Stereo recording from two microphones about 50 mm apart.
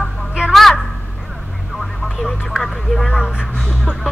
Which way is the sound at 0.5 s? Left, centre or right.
Centre.